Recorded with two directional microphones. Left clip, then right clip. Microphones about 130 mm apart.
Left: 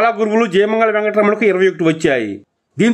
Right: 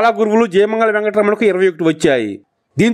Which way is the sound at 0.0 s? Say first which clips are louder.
Right 1 dB; 40° right (ahead or behind).